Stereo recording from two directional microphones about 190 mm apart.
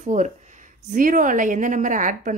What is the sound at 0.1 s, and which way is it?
A woman's voice, 40° right (ahead or behind).